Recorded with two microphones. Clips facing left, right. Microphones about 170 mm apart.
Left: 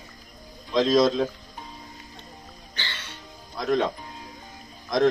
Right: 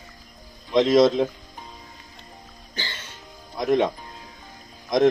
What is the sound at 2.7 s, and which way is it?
Music, 45° right (ahead or behind).